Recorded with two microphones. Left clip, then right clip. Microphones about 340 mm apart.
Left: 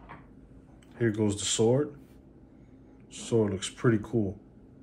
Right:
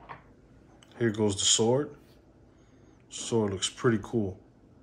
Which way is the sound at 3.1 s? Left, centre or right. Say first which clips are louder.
Left 1 dB; centre.